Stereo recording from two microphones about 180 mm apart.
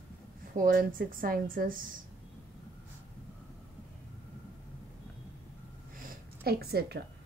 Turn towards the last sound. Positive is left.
turn(degrees=-60)  # may be behind; listen again after turning